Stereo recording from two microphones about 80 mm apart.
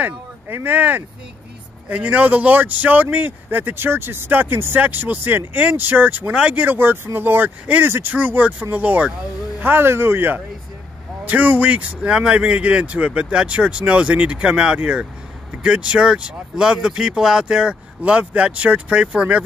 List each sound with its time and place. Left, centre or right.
0.0 s speech: right